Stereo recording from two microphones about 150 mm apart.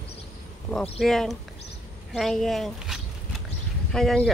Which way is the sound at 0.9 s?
Centre (ahead or behind).